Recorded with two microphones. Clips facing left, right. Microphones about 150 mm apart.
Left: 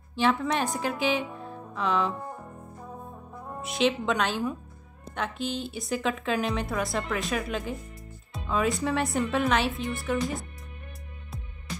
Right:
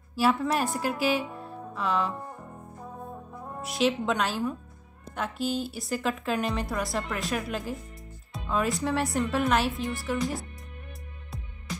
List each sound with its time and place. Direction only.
0.1 s a woman's voice: 5° right (ahead or behind)
3.6 s a woman's voice: centre (ahead or behind)